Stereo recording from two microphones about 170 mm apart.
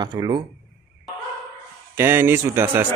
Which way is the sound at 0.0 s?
25° right (ahead or behind).